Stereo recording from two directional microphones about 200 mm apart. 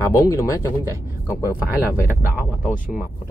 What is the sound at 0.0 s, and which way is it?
Speech, 15° left (ahead or behind).